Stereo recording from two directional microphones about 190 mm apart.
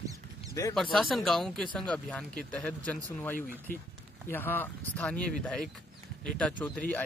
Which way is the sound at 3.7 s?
45° left (ahead or behind).